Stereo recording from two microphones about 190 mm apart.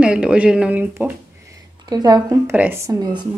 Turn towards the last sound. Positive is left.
turn(degrees=-15)  # may be behind; listen again after turning